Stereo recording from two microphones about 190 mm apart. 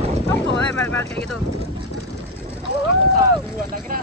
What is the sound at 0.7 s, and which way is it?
Speech, 10° left (ahead or behind).